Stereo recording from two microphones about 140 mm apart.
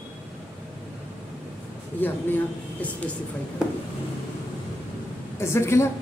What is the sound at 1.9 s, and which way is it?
Speech, 15° left (ahead or behind).